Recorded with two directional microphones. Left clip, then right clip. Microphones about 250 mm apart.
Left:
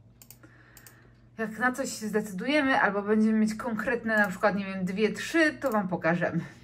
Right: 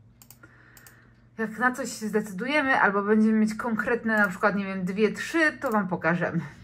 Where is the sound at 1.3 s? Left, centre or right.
Centre.